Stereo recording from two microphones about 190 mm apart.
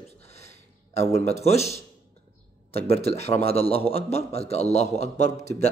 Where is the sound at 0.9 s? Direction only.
15° left (ahead or behind).